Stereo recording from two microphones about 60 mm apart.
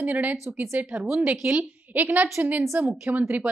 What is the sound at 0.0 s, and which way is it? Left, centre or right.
Speech, right.